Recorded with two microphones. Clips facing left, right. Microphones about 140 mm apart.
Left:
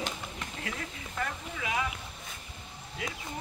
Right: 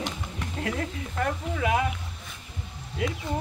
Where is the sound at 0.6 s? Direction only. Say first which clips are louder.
Right 11 dB; 50° right (ahead or behind).